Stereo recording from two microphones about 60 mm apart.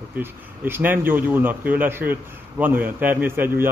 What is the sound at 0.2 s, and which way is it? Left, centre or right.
Speech, right.